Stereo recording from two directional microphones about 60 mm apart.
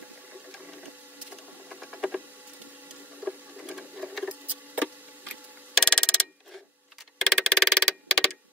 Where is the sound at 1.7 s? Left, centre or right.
Centre.